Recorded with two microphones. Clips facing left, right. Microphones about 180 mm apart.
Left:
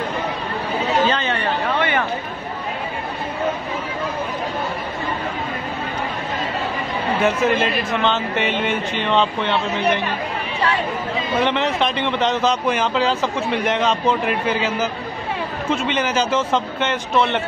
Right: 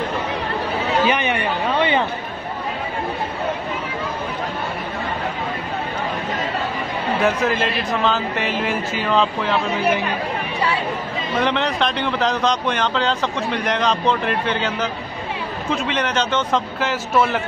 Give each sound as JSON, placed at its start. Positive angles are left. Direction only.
{"t": 1.0, "sound": "a sound", "side_deg": -15}
{"t": 7.2, "sound": "speech", "side_deg": 0}
{"t": 11.3, "sound": "speech", "side_deg": 0}